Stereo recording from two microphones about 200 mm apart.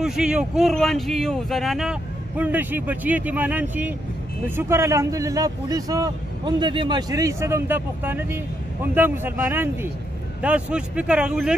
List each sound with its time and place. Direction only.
0.0 s speech: 5° right (ahead or behind)